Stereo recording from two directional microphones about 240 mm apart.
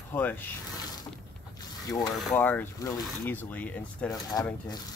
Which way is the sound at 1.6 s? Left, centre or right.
Centre.